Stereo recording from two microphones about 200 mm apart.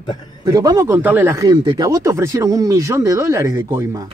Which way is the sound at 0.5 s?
15° right (ahead or behind).